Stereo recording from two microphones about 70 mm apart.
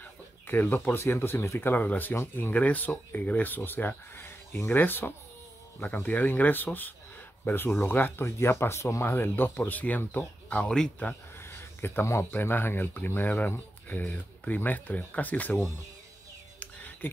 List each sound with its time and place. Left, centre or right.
0.0 s speech: left
11.3 s speech: left
16.5 s a sound: left